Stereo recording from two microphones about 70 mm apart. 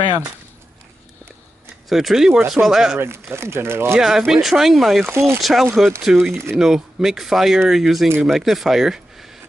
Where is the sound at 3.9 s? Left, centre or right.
Centre.